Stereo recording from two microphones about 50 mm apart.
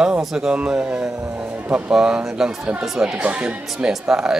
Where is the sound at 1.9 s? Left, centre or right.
Centre.